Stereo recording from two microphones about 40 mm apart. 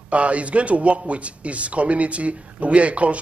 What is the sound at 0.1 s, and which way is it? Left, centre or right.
Speech, right.